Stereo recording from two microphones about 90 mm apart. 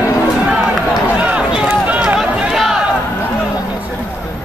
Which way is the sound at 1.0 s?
15° right (ahead or behind).